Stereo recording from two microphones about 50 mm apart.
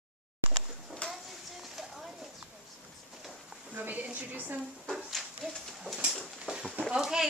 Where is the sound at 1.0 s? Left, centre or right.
Left.